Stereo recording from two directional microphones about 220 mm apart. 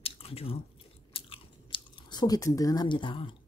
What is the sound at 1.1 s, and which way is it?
Biting, 25° left (ahead or behind).